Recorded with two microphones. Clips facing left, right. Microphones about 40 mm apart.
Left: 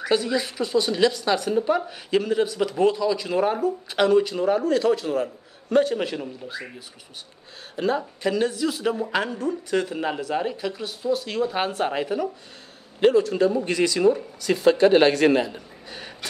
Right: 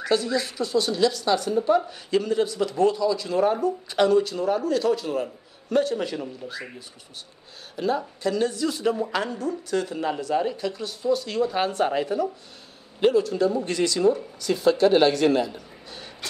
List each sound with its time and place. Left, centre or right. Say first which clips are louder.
0.0 s speech: left 1 dB; centre
4.4 s a man's voice: left 2 dB; left
5.8 s speech: left 3 dB; left
6.0 s speech: even; centre
7.7 s speech: left 1 dB; left
8.2 s speech: left 2 dB; centre
13.0 s a man's voice: left 2 dB; left
13.7 s a man's voice: left 2 dB; left
15.4 s a sound: even; left